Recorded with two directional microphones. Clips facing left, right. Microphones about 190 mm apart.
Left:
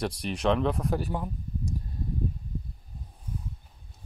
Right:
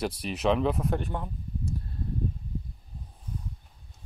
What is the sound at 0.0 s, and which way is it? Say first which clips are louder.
Speech: even; 5° right (ahead or behind).